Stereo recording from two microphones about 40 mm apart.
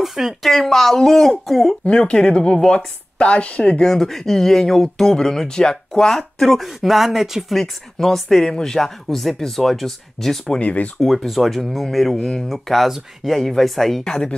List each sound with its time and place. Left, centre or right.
0.0 s speech: centre
0.5 s speech: centre
1.9 s speech: left
3.8 s speech: centre
7.5 s speech: centre
10.6 s speech: left
11.0 s speech: centre
12.2 s speech: centre
12.4 s speech: centre
14.0 s speech: left